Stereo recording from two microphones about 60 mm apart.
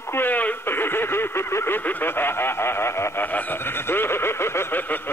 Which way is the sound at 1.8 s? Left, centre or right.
Left.